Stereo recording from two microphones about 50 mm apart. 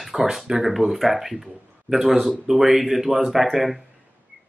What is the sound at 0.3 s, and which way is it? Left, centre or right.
Speech, centre.